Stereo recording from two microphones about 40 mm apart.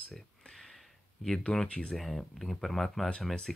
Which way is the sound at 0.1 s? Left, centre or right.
Centre.